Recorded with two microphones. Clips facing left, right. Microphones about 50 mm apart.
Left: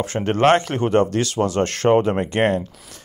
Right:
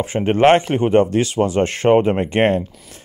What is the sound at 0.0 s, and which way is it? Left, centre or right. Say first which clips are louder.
Speech: right 3 dB; centre.